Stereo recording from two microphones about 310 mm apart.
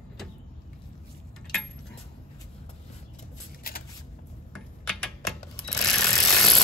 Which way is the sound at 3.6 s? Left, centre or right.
Left.